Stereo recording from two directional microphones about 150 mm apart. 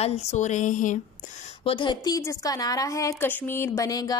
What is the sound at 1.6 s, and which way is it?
A woman's voice, 35° left (ahead or behind).